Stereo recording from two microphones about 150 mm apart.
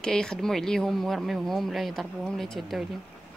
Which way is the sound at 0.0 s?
5° left (ahead or behind).